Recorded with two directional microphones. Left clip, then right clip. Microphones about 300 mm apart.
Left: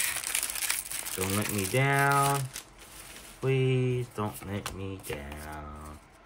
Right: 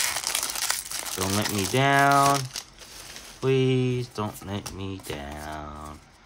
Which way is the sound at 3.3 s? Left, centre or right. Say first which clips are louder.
Right 5 dB; centre.